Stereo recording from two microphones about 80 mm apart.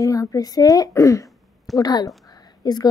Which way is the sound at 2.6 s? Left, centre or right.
Left.